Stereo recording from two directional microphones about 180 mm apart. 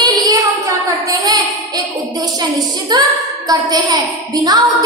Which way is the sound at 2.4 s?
25° right (ahead or behind).